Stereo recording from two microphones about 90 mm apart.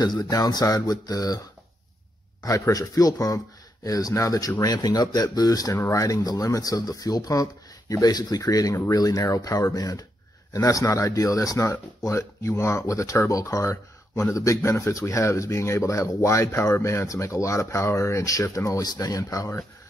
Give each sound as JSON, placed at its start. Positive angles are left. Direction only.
{"t": 0.0, "sound": "speech", "side_deg": 45}
{"t": 2.4, "sound": "speech", "side_deg": 35}